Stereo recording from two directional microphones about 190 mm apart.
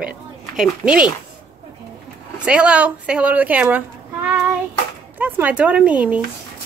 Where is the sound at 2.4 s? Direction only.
5° right (ahead or behind).